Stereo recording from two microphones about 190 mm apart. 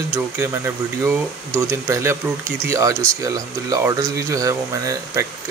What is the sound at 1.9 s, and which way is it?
Speech, 15° right (ahead or behind).